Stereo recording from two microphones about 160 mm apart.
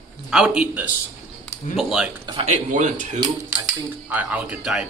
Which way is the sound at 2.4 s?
50° right (ahead or behind).